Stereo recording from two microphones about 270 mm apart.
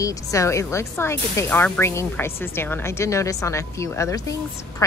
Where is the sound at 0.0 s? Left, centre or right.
Centre.